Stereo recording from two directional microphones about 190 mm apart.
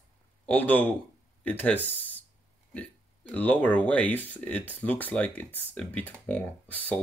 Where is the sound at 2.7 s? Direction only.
5° left (ahead or behind).